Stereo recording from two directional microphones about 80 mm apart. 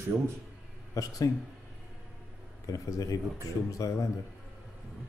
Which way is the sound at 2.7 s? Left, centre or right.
Left.